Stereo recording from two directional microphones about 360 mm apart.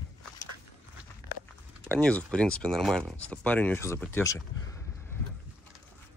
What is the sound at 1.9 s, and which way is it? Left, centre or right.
Speech, centre.